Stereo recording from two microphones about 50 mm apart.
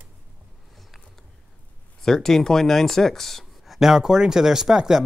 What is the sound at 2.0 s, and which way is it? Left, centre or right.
Speech, centre.